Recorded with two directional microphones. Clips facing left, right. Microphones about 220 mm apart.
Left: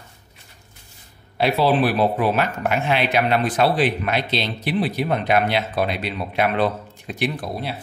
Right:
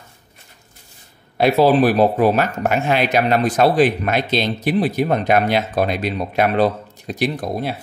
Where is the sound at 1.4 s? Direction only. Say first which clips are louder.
Right 5 dB; 45° right (ahead or behind).